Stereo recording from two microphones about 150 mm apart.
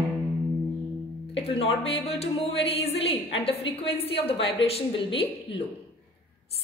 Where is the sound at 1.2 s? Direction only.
40° left (ahead or behind).